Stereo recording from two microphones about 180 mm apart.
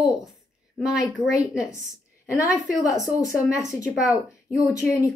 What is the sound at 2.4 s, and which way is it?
Speech, 15° left (ahead or behind).